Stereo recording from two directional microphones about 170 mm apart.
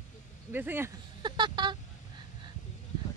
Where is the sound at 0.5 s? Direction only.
10° right (ahead or behind).